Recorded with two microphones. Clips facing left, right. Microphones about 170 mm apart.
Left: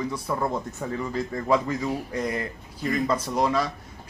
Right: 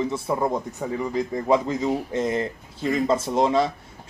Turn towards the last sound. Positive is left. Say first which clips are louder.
# right 4 dB
turn(degrees=-25)  # may be behind; listen again after turning